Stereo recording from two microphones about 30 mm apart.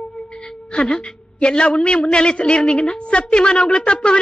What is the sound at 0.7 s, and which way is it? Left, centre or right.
Speech, left.